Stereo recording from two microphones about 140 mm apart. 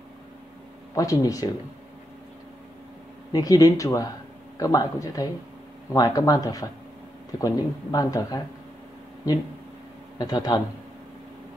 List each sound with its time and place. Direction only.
0.9 s speech: 25° left (ahead or behind)
3.3 s speech: 25° left (ahead or behind)
10.1 s a man's voice: 25° left (ahead or behind)